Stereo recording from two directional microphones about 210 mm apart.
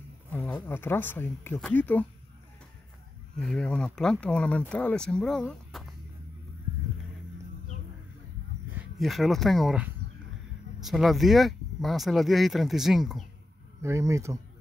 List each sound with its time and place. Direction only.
0.3 s speech: 5° left (ahead or behind)
3.3 s speech: 5° left (ahead or behind)
8.7 s speech: centre (ahead or behind)
13.7 s speech: 15° right (ahead or behind)